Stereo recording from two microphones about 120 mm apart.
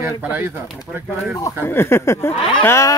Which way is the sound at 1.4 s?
20° left (ahead or behind).